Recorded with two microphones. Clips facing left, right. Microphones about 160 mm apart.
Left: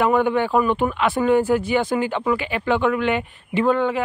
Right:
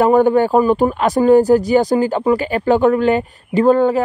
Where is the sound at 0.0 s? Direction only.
40° right (ahead or behind).